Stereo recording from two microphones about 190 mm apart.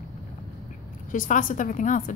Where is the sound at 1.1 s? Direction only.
45° left (ahead or behind).